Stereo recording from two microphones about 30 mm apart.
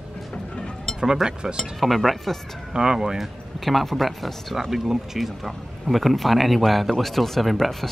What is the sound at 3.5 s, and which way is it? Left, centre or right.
Speech, centre.